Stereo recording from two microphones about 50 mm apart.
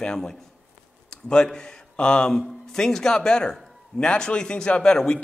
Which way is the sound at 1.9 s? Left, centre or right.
Centre.